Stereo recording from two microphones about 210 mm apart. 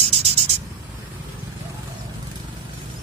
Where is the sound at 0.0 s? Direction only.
30° right (ahead or behind).